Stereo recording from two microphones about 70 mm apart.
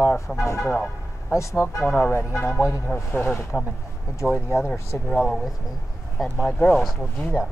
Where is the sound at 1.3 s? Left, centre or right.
Left.